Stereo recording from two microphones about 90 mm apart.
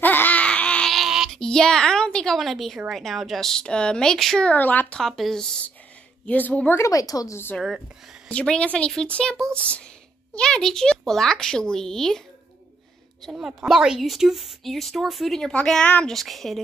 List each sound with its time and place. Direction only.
0.0 s baby cry: 20° left (ahead or behind)
0.9 s a sound: 5° right (ahead or behind)
1.3 s a child's voice: 5° left (ahead or behind)
4.5 s a child's voice: 20° left (ahead or behind)
6.8 s a woman's voice: 40° left (ahead or behind)
8.3 s a child's voice: 10° left (ahead or behind)
13.2 s a woman's voice: 5° right (ahead or behind)